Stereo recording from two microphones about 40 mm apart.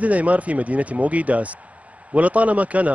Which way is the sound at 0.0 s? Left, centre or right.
Right.